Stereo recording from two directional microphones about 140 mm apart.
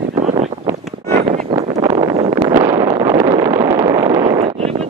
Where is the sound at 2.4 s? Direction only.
30° right (ahead or behind); by 4.9 s 45° right (ahead or behind).